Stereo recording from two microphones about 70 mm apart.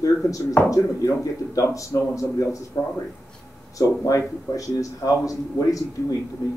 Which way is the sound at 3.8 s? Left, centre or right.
Left.